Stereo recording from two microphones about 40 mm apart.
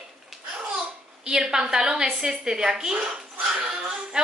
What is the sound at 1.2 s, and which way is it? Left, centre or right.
A woman's voice, centre.